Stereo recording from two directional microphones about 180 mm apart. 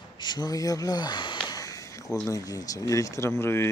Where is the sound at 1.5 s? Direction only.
20° left (ahead or behind).